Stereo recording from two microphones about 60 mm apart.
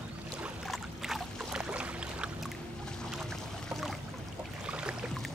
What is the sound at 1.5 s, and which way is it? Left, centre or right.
Boat, centre.